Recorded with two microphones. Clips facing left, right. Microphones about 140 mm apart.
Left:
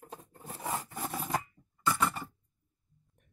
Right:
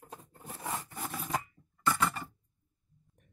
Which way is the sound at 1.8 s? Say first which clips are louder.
Even; 10° left (ahead or behind).